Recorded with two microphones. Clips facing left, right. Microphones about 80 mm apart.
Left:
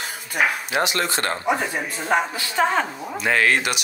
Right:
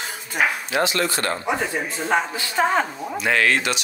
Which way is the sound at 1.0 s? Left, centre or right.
Left.